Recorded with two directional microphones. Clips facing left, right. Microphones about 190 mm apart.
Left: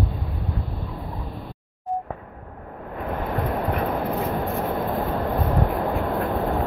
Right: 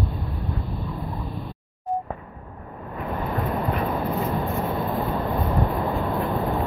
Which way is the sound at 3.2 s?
50° left (ahead or behind).